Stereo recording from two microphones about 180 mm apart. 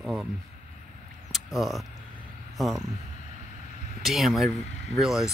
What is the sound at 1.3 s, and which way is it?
Speech, centre (ahead or behind).